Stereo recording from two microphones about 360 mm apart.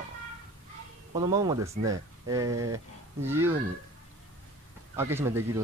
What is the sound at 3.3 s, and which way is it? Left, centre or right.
Speech, centre.